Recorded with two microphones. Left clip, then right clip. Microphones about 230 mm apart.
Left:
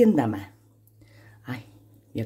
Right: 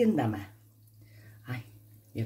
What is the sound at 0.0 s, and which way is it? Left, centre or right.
Speech, left.